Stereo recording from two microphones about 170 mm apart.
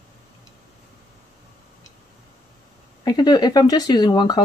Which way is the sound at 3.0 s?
25° left (ahead or behind).